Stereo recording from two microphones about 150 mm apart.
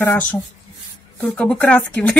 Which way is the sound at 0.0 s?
15° left (ahead or behind).